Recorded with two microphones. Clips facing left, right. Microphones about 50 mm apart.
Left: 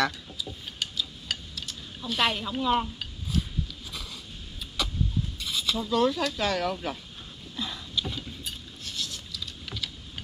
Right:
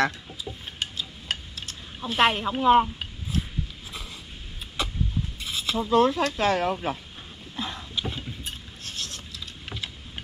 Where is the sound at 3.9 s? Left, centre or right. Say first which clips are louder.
Right 1 dB; right.